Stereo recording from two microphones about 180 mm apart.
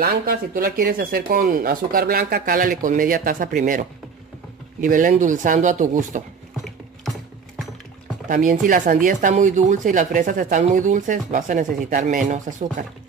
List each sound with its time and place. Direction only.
0.0 s speech: 55° right (ahead or behind)
8.3 s speech: 45° right (ahead or behind)